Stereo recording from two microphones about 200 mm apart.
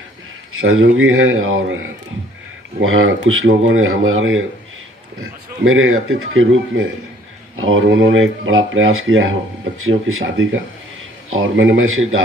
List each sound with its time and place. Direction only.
0.5 s speech: 90° right
2.8 s speech: 85° right